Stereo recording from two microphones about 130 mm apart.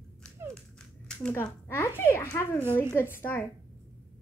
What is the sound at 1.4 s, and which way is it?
A child's voice, 20° left (ahead or behind).